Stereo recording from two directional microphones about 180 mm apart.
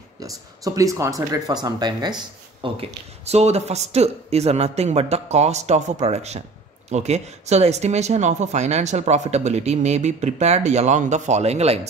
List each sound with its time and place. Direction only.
0.2 s speech: 20° right (ahead or behind)
2.6 s speech: 35° right (ahead or behind)